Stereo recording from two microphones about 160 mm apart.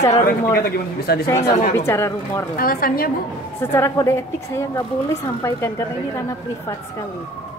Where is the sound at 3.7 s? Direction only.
15° left (ahead or behind).